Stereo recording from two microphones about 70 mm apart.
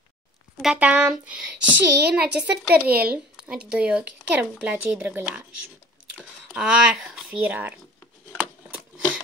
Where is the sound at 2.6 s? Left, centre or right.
Right.